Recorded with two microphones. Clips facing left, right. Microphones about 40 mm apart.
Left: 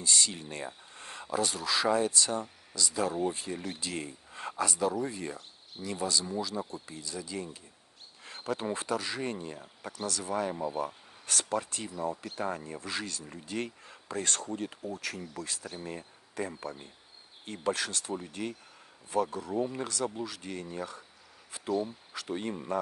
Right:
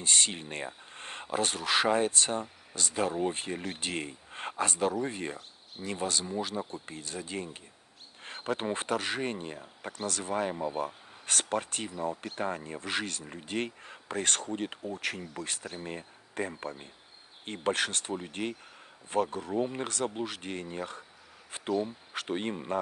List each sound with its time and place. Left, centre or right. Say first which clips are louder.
0.0 s speech: right 1 dB; right
10.5 s speech: right 1 dB; centre
11.2 s speech: right 1 dB; right
21.5 s a sound: right 1 dB; right
22.1 s speech: right 3 dB; right